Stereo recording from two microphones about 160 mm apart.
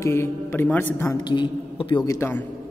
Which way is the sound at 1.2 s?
30° left (ahead or behind).